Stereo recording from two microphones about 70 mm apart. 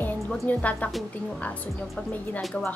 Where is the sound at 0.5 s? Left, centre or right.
Left.